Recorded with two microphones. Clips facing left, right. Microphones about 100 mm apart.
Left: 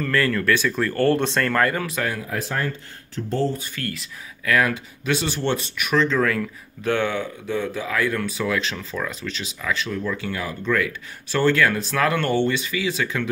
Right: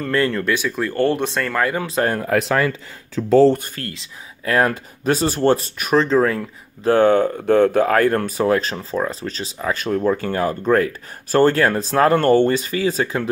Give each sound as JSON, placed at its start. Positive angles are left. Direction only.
{"t": 0.0, "sound": "speech", "side_deg": -25}
{"t": 0.6, "sound": "speech", "side_deg": -15}
{"t": 1.9, "sound": "speech", "side_deg": -35}
{"t": 2.1, "sound": "speech", "side_deg": -80}
{"t": 3.5, "sound": "speech", "side_deg": -50}
{"t": 3.8, "sound": "speech", "side_deg": -30}
{"t": 4.6, "sound": "speech", "side_deg": -40}